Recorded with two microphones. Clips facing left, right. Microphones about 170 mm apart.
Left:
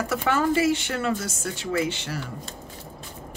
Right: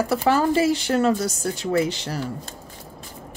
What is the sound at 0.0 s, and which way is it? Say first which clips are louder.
Speech: right 4 dB; 30° right (ahead or behind).